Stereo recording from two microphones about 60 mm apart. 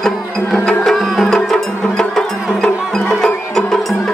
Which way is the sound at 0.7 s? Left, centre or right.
Centre.